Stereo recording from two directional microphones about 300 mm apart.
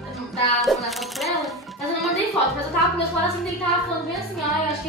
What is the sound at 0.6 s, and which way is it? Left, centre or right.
Speech, centre.